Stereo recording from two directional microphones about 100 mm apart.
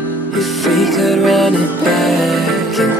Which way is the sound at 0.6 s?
Centre (ahead or behind).